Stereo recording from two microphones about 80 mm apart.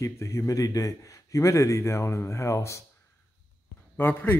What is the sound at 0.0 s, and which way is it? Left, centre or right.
A man's voice, left.